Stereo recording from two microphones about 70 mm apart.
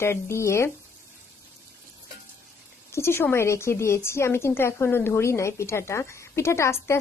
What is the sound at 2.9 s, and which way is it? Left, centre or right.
A woman's voice, left.